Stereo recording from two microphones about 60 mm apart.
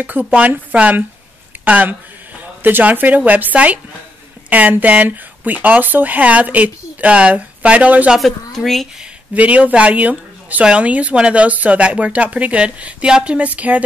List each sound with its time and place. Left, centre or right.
0.0 s speech: right
8.5 s speech: centre
9.3 s speech: right